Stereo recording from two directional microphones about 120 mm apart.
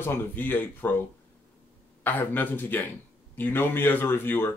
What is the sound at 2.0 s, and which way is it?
Speech, 15° left (ahead or behind).